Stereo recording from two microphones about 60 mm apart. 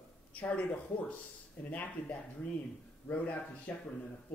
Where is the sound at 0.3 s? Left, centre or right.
Left.